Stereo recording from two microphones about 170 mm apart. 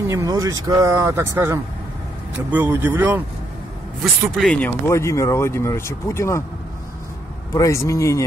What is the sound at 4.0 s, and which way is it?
Speech, centre (ahead or behind).